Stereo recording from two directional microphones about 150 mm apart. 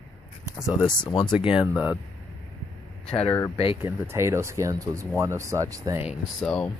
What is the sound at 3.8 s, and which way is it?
Speech, 15° right (ahead or behind).